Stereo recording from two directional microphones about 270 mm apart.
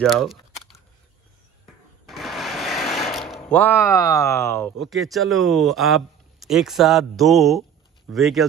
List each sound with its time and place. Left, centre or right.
0.0 s speech: centre
2.0 s speech: centre